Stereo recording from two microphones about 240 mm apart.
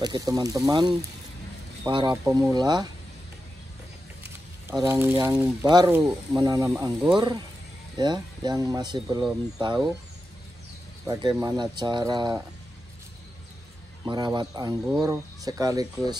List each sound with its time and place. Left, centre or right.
0.0 s speech: centre
4.6 s speech: centre
6.7 s speech: centre
7.2 s speech: centre
11.4 s speech: centre
14.0 s speech: centre